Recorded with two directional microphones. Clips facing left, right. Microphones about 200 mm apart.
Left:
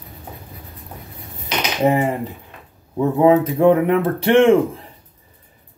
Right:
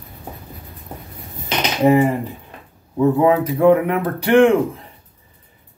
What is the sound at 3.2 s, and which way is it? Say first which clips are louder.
Speech: left 3 dB; 30° left (ahead or behind).